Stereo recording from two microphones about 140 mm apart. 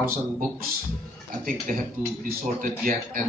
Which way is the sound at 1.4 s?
70° right (ahead or behind).